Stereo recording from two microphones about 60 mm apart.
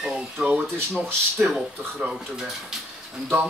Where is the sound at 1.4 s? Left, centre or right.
Centre.